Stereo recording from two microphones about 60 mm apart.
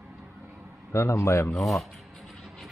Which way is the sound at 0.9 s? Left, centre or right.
Left.